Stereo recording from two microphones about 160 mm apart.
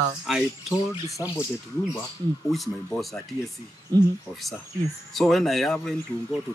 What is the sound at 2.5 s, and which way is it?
Speech, centre (ahead or behind).